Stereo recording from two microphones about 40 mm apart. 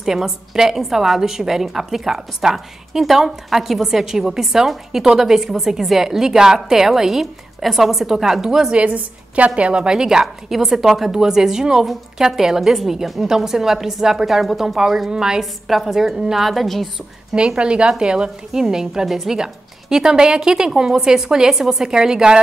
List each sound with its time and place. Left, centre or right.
0.0 s a woman's voice: centre
8.7 s a woman's voice: right; by 10.2 s centre
10.2 s a woman's voice: centre
15.0 s a woman's voice: centre
17.4 s a woman's voice: right